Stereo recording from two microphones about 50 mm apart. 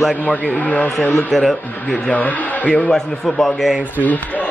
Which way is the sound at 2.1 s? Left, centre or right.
Left.